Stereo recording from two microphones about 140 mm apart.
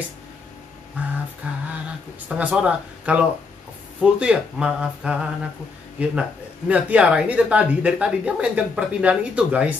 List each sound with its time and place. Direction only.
1.0 s speech: 10° right (ahead or behind)